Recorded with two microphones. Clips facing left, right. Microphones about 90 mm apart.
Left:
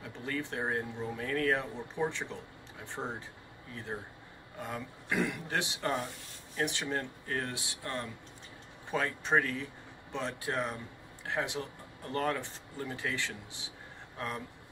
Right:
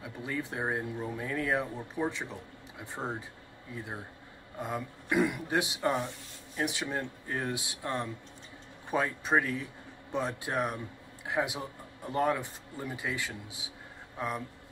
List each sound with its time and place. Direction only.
0.0 s speech: 10° right (ahead or behind)